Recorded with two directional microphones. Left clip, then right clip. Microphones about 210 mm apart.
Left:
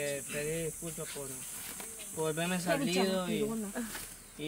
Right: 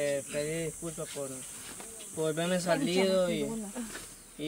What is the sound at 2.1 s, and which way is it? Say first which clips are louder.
Speech: right 3 dB; 15° right (ahead or behind).